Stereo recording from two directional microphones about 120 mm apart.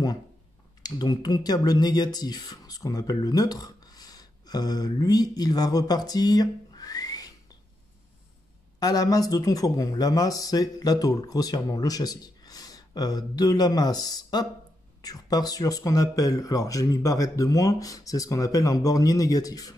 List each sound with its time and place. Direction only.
0.8 s speech: 30° left (ahead or behind)
8.7 s a man's voice: 35° left (ahead or behind)